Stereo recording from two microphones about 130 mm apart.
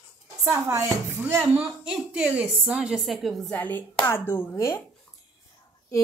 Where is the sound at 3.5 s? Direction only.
15° left (ahead or behind).